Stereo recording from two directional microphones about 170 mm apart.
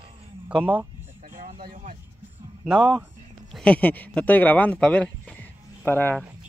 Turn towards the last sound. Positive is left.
turn(degrees=10)  # may be behind; listen again after turning